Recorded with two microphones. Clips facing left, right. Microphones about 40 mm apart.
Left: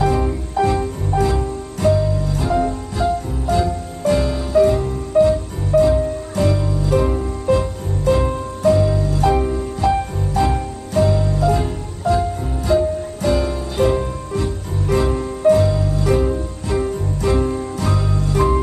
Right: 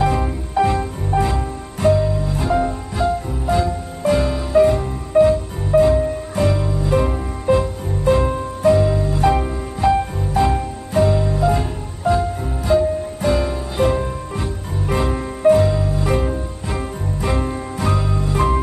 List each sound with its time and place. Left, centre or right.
0.0 s music: centre
14.3 s music: centre